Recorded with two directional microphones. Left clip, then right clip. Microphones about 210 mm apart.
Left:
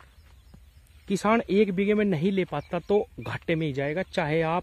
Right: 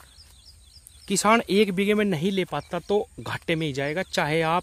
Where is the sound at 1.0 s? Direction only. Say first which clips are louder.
Right 4 dB; 10° right (ahead or behind).